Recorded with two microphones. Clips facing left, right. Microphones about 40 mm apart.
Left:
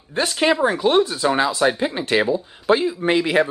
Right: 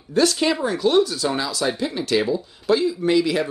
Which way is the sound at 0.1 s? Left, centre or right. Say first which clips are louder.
Even; left.